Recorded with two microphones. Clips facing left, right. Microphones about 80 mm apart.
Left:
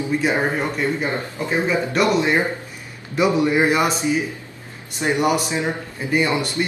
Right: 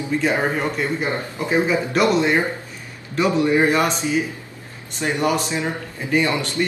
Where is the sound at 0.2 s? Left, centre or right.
Centre.